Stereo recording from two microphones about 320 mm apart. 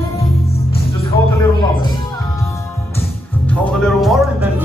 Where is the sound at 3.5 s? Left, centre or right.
Centre.